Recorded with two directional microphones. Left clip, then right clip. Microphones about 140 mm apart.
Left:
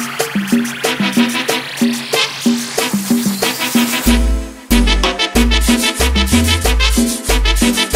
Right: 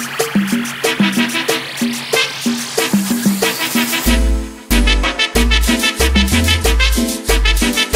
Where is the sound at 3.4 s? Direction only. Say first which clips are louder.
Even; 20° left (ahead or behind).